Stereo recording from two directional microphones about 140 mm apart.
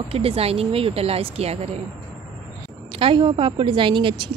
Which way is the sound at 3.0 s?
40° right (ahead or behind).